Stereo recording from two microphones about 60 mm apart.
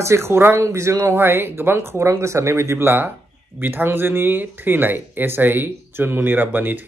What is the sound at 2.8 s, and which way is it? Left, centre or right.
Speech, right.